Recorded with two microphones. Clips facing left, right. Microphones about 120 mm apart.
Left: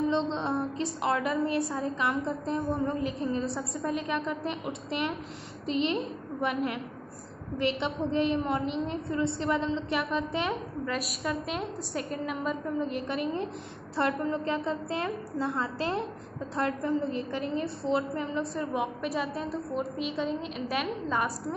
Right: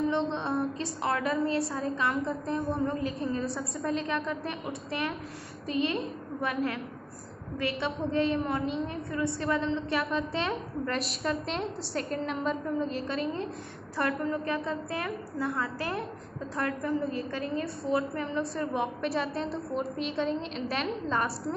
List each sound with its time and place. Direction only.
0.3 s music: 20° left (ahead or behind)
1.0 s a woman's voice: 15° left (ahead or behind)